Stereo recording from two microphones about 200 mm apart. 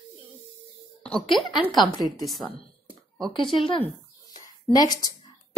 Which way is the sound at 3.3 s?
25° left (ahead or behind).